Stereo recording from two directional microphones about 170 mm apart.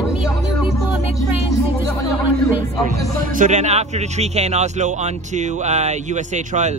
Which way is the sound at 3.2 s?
50° right (ahead or behind).